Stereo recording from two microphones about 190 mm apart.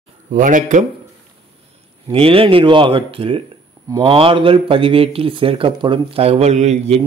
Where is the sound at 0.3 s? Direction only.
45° right (ahead or behind).